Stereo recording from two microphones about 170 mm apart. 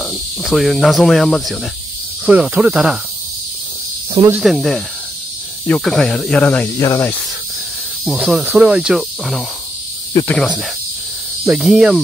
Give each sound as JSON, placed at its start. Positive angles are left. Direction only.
{"t": 0.0, "sound": "speech", "side_deg": 0}
{"t": 4.3, "sound": "speech", "side_deg": 0}
{"t": 6.8, "sound": "speech", "side_deg": 15}
{"t": 8.0, "sound": "speech", "side_deg": 0}